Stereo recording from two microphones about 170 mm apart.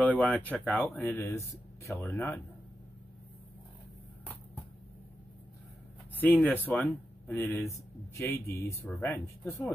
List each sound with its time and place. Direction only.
0.0 s speech: 10° left (ahead or behind)
6.1 s speech: 10° left (ahead or behind)